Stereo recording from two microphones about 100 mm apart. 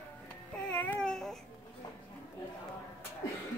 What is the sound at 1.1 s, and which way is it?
Music, 5° left (ahead or behind).